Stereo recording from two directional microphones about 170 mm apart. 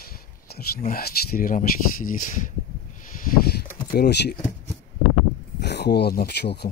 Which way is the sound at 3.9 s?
75° left (ahead or behind).